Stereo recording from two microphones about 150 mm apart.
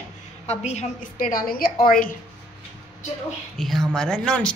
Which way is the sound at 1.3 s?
75° left (ahead or behind).